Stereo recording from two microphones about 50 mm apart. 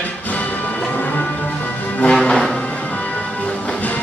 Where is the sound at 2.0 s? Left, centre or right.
Centre.